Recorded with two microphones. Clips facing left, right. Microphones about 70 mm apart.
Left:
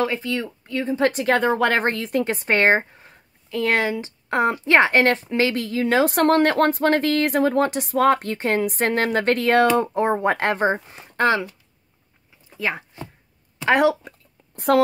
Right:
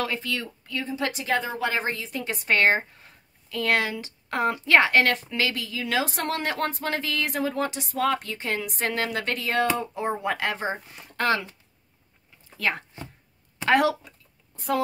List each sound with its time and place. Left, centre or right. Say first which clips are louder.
0.0 s a woman's voice: left 6 dB; left
6.0 s speech: left 11 dB; left
12.5 s speech: left 2 dB; centre
14.0 s a sound: left 7 dB; left